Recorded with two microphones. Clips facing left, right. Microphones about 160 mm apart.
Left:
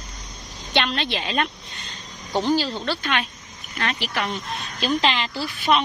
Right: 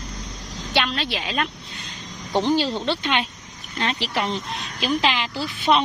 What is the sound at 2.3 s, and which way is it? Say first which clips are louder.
Speech: right 1 dB; 20° right (ahead or behind).